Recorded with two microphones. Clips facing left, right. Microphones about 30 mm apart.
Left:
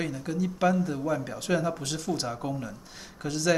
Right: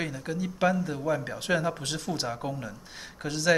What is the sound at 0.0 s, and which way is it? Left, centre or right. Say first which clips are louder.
Speech: left 2 dB; centre.